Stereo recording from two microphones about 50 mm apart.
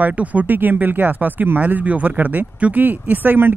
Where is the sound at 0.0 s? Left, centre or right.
Right.